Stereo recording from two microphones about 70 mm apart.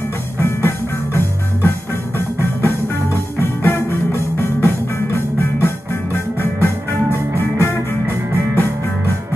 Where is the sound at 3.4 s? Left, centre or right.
Left.